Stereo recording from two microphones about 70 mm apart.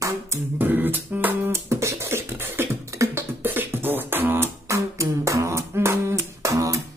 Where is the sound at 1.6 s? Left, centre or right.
Right.